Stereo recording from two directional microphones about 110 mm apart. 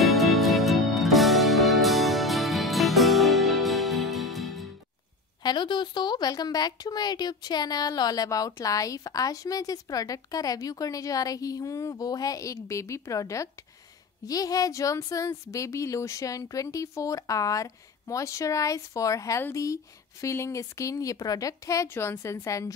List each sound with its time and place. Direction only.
0.0 s music: centre (ahead or behind)
5.4 s a woman's voice: 45° left (ahead or behind)